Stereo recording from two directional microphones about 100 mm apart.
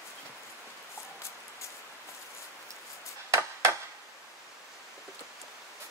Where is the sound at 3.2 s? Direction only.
30° right (ahead or behind).